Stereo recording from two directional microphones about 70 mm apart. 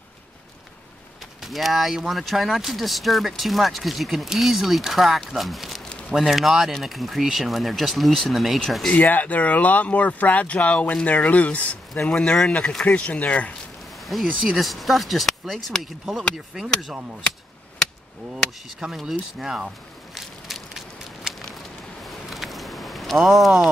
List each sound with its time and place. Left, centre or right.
1.4 s speech: centre
8.8 s speech: left
14.1 s speech: centre
18.8 s speech: centre
20.2 s a sound: centre